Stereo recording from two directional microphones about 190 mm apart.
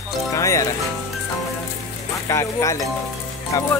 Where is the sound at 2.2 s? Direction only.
15° left (ahead or behind).